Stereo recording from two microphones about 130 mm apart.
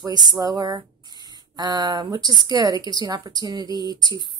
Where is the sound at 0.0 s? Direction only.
30° right (ahead or behind).